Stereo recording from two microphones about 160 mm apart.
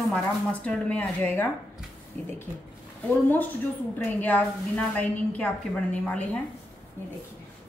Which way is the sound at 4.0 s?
10° left (ahead or behind).